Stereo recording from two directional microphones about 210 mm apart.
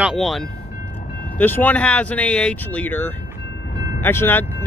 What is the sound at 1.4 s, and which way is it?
Speech, 10° left (ahead or behind).